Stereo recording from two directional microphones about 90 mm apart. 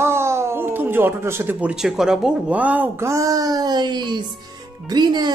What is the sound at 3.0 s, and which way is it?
Speech, 35° right (ahead or behind).